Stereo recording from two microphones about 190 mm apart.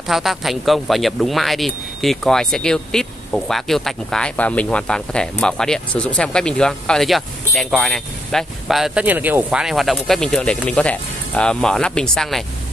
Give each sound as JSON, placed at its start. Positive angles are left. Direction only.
{"t": 0.1, "sound": "speech", "side_deg": 0}